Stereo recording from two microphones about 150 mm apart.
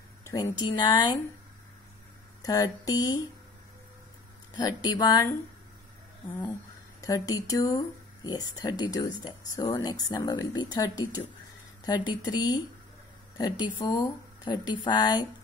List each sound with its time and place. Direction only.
0.2 s speech: 25° left (ahead or behind)
2.4 s speech: 25° left (ahead or behind)
4.6 s speech: 25° left (ahead or behind)
7.0 s speech: 25° left (ahead or behind)
12.1 s speech: 25° left (ahead or behind)